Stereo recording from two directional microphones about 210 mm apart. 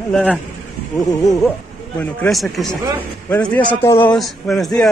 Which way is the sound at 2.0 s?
5° left (ahead or behind).